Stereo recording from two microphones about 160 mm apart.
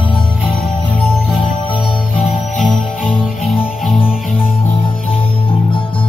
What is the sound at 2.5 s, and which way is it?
Jingle bell, centre (ahead or behind).